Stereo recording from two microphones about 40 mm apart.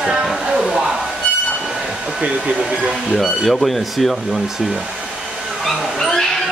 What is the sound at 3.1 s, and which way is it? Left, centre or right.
Speech, centre.